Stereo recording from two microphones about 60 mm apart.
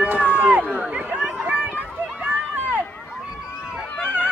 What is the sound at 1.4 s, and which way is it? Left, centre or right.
Run, right.